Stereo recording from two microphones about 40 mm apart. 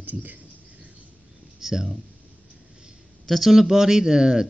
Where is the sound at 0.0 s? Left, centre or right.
Right.